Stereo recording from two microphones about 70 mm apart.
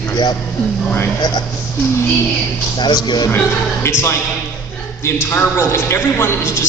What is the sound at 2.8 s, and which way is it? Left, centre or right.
Speech, left.